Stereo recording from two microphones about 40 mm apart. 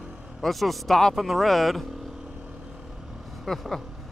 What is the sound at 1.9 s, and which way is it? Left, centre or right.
Vehicle, centre.